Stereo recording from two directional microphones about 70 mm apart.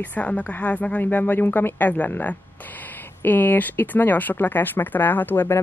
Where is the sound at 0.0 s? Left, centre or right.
Left.